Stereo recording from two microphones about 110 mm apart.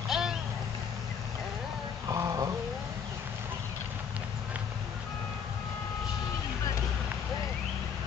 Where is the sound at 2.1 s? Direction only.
30° right (ahead or behind).